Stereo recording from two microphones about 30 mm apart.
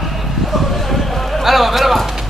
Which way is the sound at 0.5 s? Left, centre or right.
Centre.